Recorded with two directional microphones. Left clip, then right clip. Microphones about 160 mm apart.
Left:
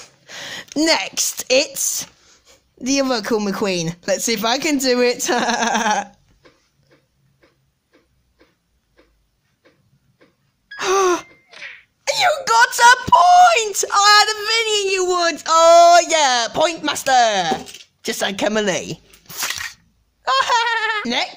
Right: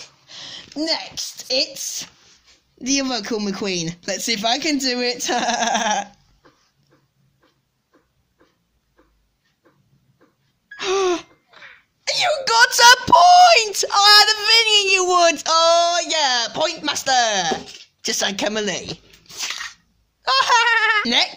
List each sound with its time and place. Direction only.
0.3 s speech: 45° left (ahead or behind); by 6.0 s 30° left (ahead or behind)
10.8 s gasp: 40° left (ahead or behind)
11.5 s laughter: 15° left (ahead or behind)
12.0 s wail: 30° left (ahead or behind)
12.5 s speech: 5° left (ahead or behind)
15.7 s speech: 35° left (ahead or behind)
18.8 s a sound: 40° left (ahead or behind)
20.2 s speech: 10° left (ahead or behind)